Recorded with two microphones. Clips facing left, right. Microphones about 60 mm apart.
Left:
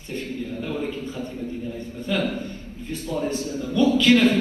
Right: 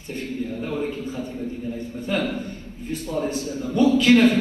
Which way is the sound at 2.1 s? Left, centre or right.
Right.